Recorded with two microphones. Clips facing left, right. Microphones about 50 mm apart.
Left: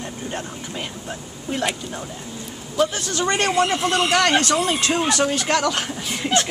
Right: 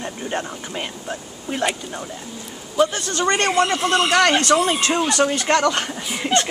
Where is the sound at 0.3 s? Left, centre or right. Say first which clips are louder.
Right 3 dB; right.